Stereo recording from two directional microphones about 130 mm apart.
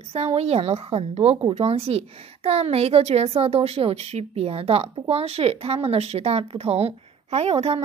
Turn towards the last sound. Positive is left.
turn(degrees=-50)  # may be behind; listen again after turning